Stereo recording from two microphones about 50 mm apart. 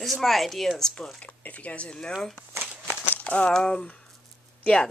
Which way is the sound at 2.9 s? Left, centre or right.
Left.